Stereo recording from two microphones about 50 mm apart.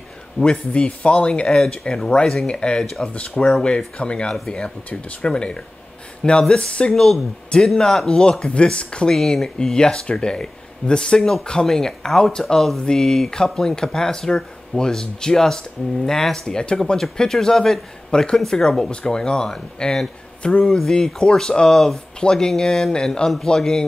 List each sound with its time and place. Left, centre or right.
0.4 s speech: left
1.6 s speech: centre
2.4 s speech: centre
2.8 s speech: centre
3.1 s speech: left
6.6 s speech: left
6.9 s speech: centre
9.1 s speech: centre